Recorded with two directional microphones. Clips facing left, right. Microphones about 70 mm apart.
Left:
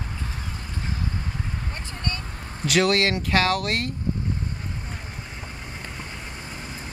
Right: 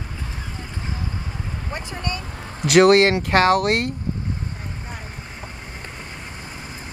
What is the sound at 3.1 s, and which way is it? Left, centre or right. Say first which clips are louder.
Speech: right 5 dB; right.